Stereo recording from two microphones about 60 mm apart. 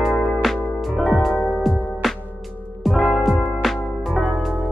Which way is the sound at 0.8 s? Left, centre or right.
Centre.